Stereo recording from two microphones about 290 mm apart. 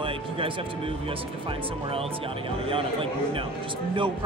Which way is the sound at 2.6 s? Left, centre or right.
Centre.